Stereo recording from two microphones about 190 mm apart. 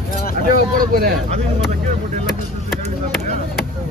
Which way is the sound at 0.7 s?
45° right (ahead or behind).